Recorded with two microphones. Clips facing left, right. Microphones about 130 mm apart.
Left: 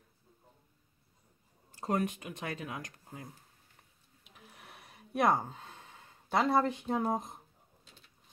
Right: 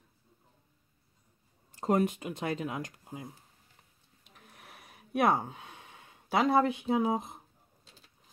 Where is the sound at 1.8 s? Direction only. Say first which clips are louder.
Right 5 dB; 25° right (ahead or behind).